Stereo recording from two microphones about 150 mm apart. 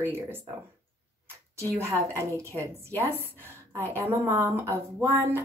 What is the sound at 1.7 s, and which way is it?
Speech, 20° right (ahead or behind).